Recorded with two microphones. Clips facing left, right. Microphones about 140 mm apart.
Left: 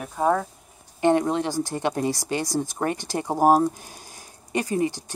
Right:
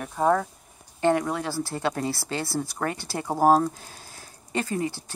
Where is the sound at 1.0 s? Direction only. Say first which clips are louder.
Left 3 dB; 20° left (ahead or behind).